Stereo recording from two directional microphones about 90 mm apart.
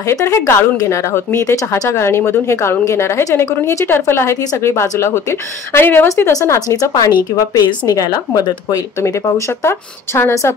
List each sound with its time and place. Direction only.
0.0 s speech: 35° left (ahead or behind)